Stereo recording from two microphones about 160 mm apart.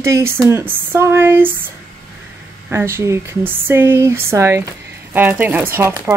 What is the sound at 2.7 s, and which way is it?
Speech, 15° right (ahead or behind).